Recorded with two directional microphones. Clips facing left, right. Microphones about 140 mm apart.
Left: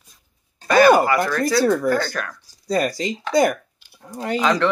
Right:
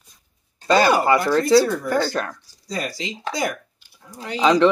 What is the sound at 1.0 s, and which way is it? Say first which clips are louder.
Speech: right 3 dB; 25° right (ahead or behind).